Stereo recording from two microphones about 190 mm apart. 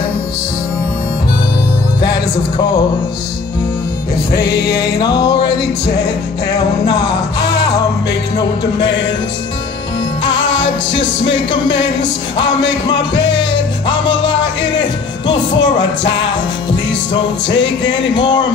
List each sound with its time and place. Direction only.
2.0 s music: 25° left (ahead or behind)
4.3 s music: 60° left (ahead or behind)
5.0 s music: 20° left (ahead or behind)
6.5 s music: 20° left (ahead or behind)
8.7 s music: 70° left (ahead or behind)
10.2 s music: 25° left (ahead or behind)
10.9 s music: 75° left (ahead or behind)
13.8 s music: 25° left (ahead or behind)
17.5 s music: 75° left (ahead or behind)
18.1 s music: 25° left (ahead or behind)